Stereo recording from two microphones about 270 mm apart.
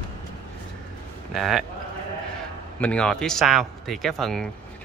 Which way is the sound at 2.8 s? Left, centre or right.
Centre.